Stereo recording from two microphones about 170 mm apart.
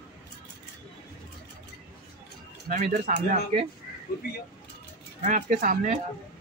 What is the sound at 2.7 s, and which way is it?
Speech, 45° right (ahead or behind).